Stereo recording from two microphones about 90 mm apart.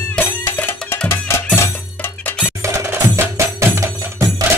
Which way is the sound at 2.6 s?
30° right (ahead or behind).